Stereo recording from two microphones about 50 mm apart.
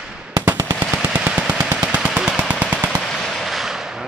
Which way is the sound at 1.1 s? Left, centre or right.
Right.